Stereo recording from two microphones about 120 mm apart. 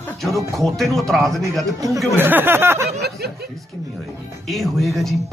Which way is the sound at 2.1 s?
15° right (ahead or behind).